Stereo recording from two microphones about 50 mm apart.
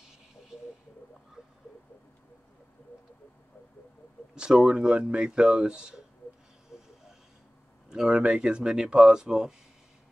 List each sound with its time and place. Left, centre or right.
4.4 s speech: centre
6.7 s vehicle: centre
7.9 s speech: centre